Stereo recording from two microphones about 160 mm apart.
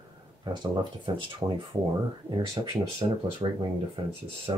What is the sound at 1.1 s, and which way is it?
Speech, 30° right (ahead or behind).